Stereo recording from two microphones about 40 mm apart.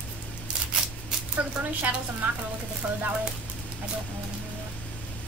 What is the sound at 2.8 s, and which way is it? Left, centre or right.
Speech, right.